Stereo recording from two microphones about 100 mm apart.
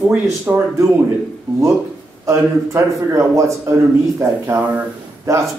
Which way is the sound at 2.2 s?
30° right (ahead or behind).